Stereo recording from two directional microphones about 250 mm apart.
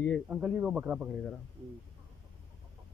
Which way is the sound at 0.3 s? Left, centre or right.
Centre.